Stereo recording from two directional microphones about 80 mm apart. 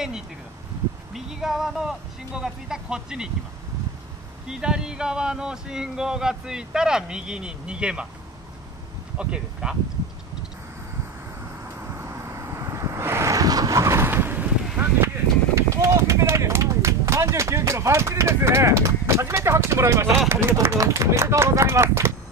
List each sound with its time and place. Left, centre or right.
1.1 s speech: centre
4.5 s speech: centre
9.2 s speech: centre
11.9 s vehicle: right
15.5 s a sound: right
20.2 s speech: right